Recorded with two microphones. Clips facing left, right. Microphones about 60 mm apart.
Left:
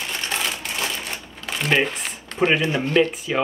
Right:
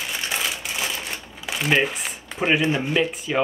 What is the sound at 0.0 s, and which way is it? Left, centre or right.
Crumpling, centre.